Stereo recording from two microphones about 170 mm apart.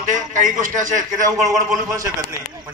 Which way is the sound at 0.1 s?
50° right (ahead or behind).